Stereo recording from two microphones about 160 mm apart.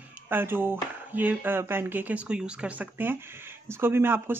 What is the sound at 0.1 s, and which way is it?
Speech, 15° right (ahead or behind).